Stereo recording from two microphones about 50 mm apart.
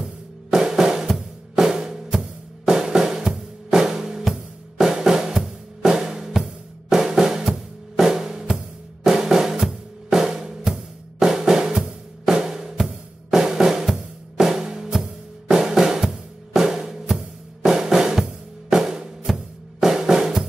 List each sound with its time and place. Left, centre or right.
0.0 s drum kit: centre
4.2 s drum: centre